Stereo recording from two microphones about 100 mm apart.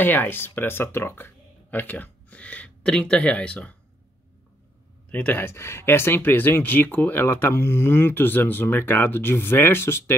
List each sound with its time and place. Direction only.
0.0 s speech: 20° left (ahead or behind)
5.1 s speech: 15° left (ahead or behind)
5.4 s speech: 25° left (ahead or behind)